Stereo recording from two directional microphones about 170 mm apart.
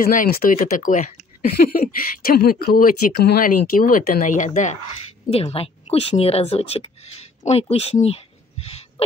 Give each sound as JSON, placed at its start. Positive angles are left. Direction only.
{"t": 0.0, "sound": "speech", "side_deg": 55}
{"t": 5.3, "sound": "a woman's voice", "side_deg": 35}